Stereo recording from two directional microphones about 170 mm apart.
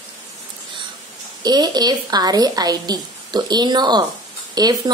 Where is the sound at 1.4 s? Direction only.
25° right (ahead or behind).